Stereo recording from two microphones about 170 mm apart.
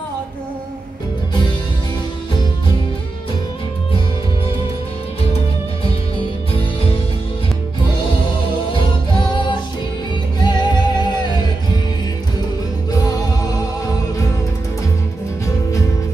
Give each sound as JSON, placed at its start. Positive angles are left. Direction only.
{"t": 8.7, "sound": "music", "side_deg": 30}